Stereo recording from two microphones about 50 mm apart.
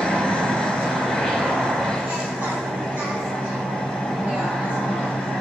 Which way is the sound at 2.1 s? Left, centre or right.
Centre.